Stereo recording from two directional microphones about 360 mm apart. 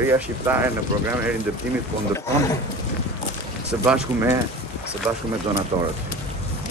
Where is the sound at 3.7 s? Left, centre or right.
Centre.